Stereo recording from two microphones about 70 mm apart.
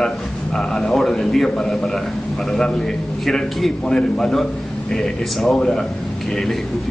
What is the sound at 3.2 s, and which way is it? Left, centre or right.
A man's voice, centre.